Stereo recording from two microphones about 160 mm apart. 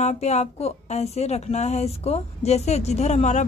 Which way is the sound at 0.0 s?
45° left (ahead or behind).